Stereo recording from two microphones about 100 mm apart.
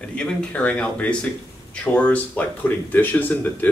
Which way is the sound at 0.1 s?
10° left (ahead or behind).